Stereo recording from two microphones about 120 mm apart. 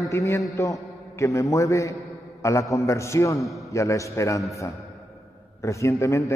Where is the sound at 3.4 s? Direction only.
Centre (ahead or behind).